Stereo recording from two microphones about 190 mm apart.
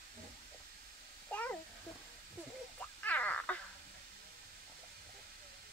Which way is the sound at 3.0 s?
10° left (ahead or behind).